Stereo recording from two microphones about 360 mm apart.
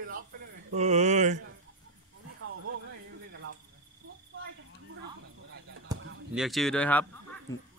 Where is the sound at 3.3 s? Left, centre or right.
Right.